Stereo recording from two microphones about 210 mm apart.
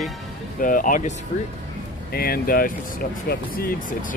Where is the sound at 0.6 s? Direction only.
40° left (ahead or behind).